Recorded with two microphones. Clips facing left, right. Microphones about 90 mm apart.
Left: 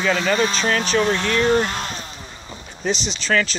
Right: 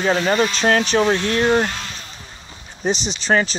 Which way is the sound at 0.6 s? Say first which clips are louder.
Right 3 dB; 45° right (ahead or behind).